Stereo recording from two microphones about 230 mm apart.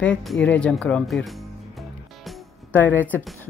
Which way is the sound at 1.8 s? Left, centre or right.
Centre.